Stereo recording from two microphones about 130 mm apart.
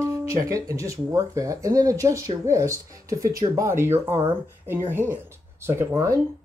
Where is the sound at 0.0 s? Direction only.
25° right (ahead or behind).